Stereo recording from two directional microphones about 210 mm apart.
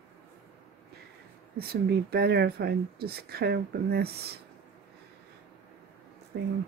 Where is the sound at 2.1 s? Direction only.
50° right (ahead or behind).